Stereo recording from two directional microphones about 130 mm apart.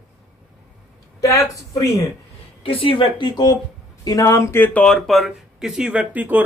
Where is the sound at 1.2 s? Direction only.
25° left (ahead or behind).